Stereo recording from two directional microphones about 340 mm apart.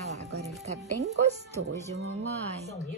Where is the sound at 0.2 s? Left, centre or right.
Right.